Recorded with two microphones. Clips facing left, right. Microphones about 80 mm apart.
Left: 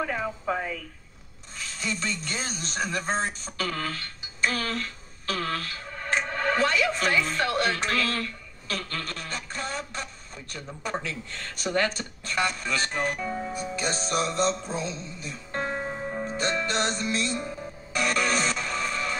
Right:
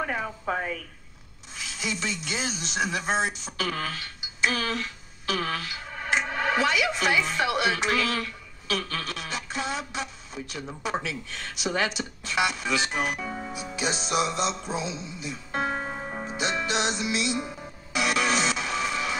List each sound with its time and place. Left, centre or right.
0.5 s speech: right
1.6 s a sound: centre
2.2 s music: centre
3.4 s speech: centre
12.3 s music: centre